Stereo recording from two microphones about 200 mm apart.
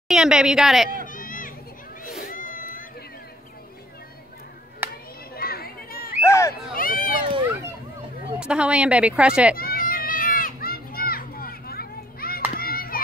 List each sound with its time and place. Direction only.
0.1 s speech: 5° right (ahead or behind)
1.0 s children playing: 40° left (ahead or behind)
2.2 s cat: 40° left (ahead or behind)
4.8 s children playing: 10° right (ahead or behind)
5.3 s a sound: 50° left (ahead or behind)
6.2 s a sound: 15° left (ahead or behind)
6.7 s a sound: 45° left (ahead or behind)
8.4 s speech: 5° right (ahead or behind)
9.6 s children playing: 45° left (ahead or behind)